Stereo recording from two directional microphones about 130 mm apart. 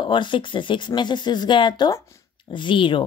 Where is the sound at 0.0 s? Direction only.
35° left (ahead or behind).